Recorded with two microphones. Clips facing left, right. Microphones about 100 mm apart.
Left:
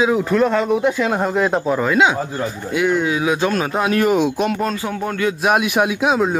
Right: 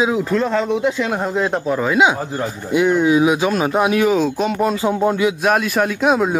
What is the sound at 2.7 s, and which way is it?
Speech, 20° right (ahead or behind).